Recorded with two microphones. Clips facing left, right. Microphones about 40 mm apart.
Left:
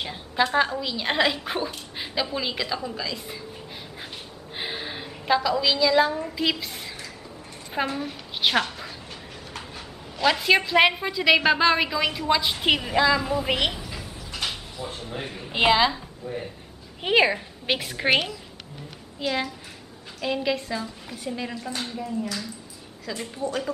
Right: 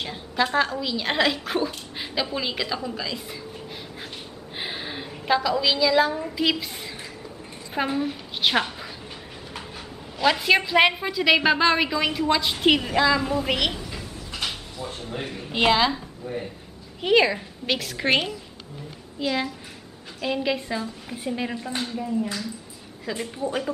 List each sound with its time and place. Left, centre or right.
0.0 s a woman's voice: centre
4.6 s a woman's voice: centre
7.7 s a woman's voice: centre
10.1 s a woman's voice: centre
17.0 s a woman's voice: centre
17.9 s a woman's voice: centre
20.5 s a woman's voice: centre
21.8 s a woman's voice: centre
23.0 s a woman's voice: centre